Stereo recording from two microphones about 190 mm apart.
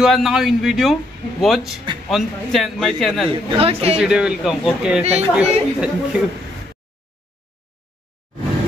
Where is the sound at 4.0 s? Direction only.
5° right (ahead or behind).